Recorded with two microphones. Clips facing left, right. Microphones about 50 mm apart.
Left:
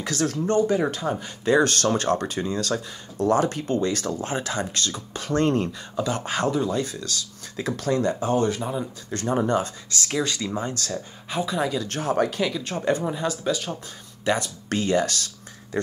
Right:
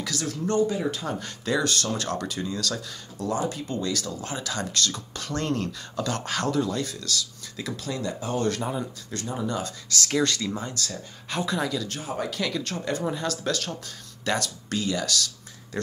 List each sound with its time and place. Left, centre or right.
0.0 s speech: left
1.0 s speech: left
1.6 s speech: left
3.3 s speech: left
7.7 s speech: left
9.8 s speech: left
11.2 s speech: centre
11.9 s speech: left
12.7 s speech: left
13.2 s speech: centre
14.7 s speech: left